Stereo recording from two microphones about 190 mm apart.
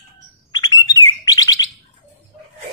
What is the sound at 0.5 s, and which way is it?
Bird, 20° left (ahead or behind).